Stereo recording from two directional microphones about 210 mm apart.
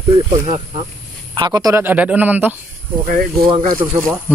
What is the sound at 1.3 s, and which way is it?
Speech, 20° right (ahead or behind).